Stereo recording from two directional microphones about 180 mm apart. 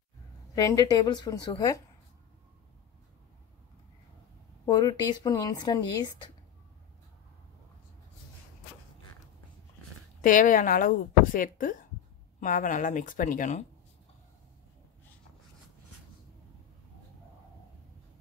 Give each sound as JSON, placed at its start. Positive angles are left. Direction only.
{"t": 0.6, "sound": "speech", "side_deg": 20}
{"t": 4.6, "sound": "speech", "side_deg": 25}
{"t": 10.2, "sound": "a woman's voice", "side_deg": 50}